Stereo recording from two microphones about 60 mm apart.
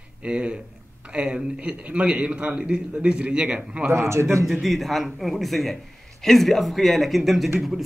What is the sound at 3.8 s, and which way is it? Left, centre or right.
Speech, right.